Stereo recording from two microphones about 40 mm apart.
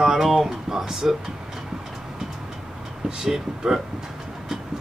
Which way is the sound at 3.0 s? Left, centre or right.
Centre.